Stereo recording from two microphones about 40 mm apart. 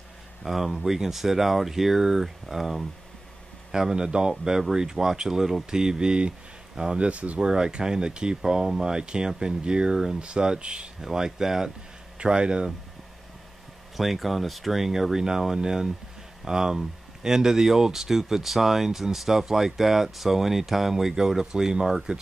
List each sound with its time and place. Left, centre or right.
0.4 s speech: centre
3.7 s speech: centre
7.1 s speech: right
7.3 s speech: centre
11.0 s speech: centre
13.9 s speech: centre